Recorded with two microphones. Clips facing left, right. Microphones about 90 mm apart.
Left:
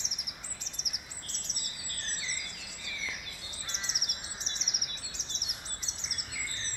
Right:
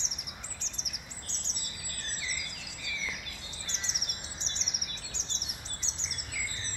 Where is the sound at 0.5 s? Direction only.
10° left (ahead or behind).